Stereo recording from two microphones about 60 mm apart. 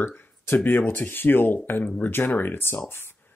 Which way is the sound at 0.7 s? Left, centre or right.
Left.